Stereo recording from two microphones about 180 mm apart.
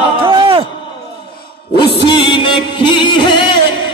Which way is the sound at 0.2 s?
30° right (ahead or behind).